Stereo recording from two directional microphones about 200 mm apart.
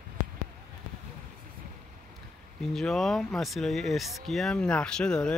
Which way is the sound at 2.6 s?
Centre (ahead or behind).